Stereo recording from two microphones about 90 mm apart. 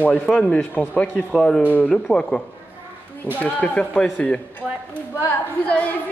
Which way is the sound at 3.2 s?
20° left (ahead or behind).